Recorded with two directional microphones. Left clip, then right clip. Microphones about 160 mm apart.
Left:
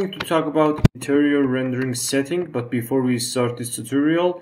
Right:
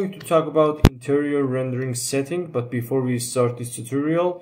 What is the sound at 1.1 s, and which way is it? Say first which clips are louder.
Speech: left 6 dB; 10° left (ahead or behind).